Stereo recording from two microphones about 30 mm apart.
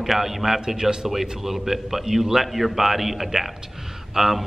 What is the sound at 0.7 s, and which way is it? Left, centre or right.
Speech, right.